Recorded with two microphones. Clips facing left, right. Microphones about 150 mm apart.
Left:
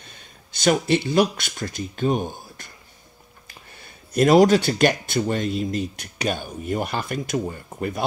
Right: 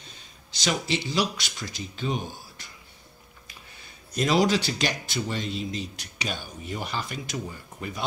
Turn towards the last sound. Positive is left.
turn(degrees=55)  # may be behind; listen again after turning